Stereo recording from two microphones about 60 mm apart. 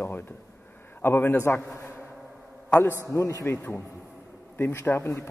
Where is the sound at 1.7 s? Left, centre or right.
Left.